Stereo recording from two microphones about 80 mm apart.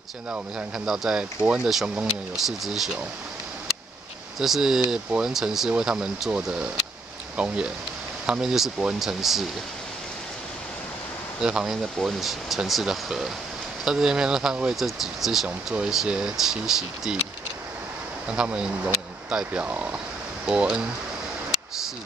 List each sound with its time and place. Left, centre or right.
0.3 s speech: centre
0.8 s speech: centre
4.4 s speech: centre
11.4 s speech: centre
15.4 s speech: centre
18.3 s speech: centre